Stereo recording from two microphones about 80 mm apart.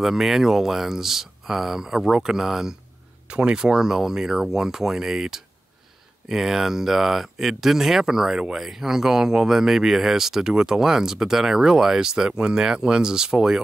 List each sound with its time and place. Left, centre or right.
0.0 s speech: centre